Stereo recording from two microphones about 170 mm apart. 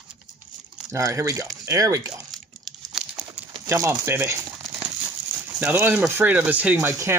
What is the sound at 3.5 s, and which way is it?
Speech, 20° right (ahead or behind).